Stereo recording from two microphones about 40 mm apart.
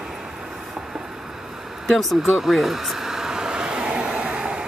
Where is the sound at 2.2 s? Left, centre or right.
Centre; by 4.2 s right.